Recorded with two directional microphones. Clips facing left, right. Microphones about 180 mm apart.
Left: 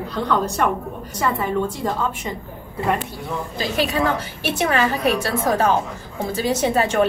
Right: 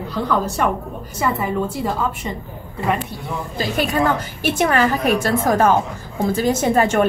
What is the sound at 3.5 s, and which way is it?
A woman's voice, 50° right (ahead or behind).